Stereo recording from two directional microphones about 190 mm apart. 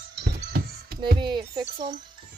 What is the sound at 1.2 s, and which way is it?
Speech, 25° right (ahead or behind).